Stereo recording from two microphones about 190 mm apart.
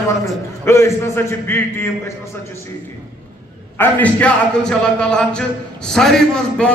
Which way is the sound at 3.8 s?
10° left (ahead or behind).